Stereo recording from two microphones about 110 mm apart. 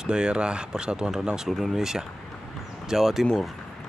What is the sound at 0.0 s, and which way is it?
Speech, 10° right (ahead or behind).